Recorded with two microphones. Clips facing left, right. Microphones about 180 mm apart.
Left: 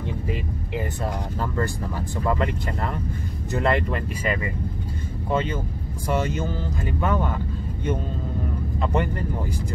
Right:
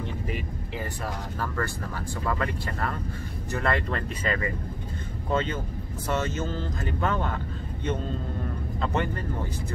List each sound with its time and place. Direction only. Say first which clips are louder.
0.7 s speech: left 5 dB; 20° left (ahead or behind)
8.8 s speech: left 3 dB; 15° left (ahead or behind)